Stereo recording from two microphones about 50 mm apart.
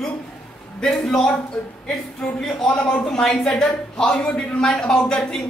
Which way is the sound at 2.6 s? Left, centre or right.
Centre.